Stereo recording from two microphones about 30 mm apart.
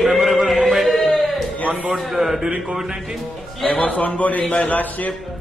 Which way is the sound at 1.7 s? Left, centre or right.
Right.